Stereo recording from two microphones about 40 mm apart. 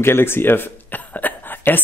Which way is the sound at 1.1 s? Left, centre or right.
Left.